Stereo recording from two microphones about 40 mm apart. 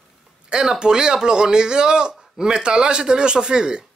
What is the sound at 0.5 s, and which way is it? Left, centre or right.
Speech, right.